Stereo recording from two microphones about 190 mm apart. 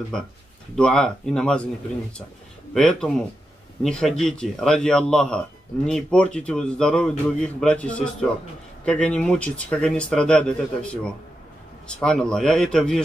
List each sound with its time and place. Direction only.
0.7 s a man's voice: 5° left (ahead or behind)
2.7 s a man's voice: 5° left (ahead or behind)
12.0 s a man's voice: 5° left (ahead or behind)